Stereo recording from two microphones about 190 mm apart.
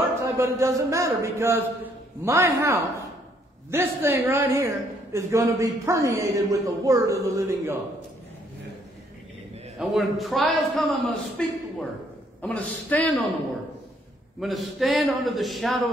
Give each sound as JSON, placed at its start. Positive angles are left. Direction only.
{"t": 0.2, "sound": "a man's voice", "side_deg": -15}
{"t": 9.8, "sound": "a man's voice", "side_deg": 0}
{"t": 14.4, "sound": "a man's voice", "side_deg": 0}